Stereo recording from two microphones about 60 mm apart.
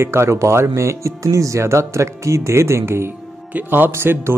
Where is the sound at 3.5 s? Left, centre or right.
Right.